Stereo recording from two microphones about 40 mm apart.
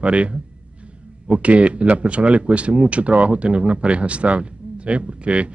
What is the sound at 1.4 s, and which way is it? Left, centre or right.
Speech, right.